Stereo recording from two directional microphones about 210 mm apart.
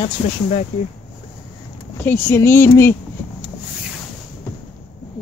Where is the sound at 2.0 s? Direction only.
10° left (ahead or behind).